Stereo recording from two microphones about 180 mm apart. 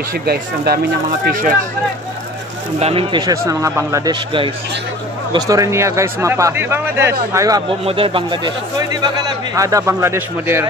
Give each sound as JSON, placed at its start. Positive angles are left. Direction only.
{"t": 0.1, "sound": "speech", "side_deg": -60}
{"t": 1.2, "sound": "speech", "side_deg": -45}
{"t": 2.8, "sound": "a man's voice", "side_deg": -30}
{"t": 7.8, "sound": "a man's voice", "side_deg": -30}